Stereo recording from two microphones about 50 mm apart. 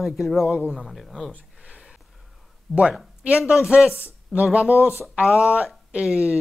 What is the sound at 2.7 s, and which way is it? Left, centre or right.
Speech, centre.